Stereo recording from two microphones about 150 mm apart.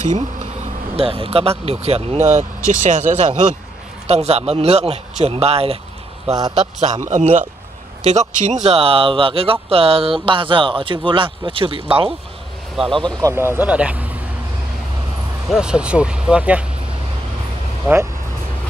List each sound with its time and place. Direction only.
0.0 s speech: 50° right (ahead or behind)
0.9 s a man's voice: 40° right (ahead or behind); by 3.3 s 55° right (ahead or behind)
4.1 s a man's voice: 45° right (ahead or behind)
12.7 s speech: centre (ahead or behind)
13.2 s speech: 15° right (ahead or behind)
15.5 s speech: 5° right (ahead or behind)
17.9 s speech: 15° right (ahead or behind)